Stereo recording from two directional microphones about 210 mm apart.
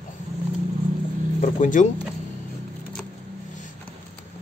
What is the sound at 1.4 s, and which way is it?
Speech, 35° left (ahead or behind).